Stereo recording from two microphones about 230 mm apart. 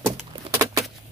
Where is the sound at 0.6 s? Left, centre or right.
Centre.